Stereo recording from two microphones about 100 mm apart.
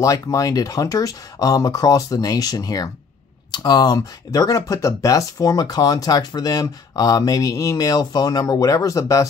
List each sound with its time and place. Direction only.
0.0 s speech: 35° left (ahead or behind)